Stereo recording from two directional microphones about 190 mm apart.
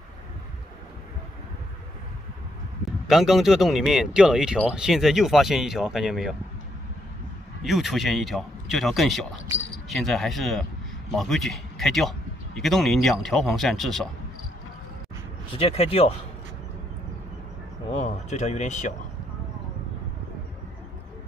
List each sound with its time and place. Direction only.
3.1 s a man's voice: centre (ahead or behind)
7.6 s a man's voice: centre (ahead or behind)
15.5 s speech: 30° left (ahead or behind)
17.9 s speech: 35° left (ahead or behind)